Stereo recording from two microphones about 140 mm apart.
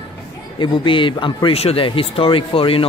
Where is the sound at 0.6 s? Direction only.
35° left (ahead or behind).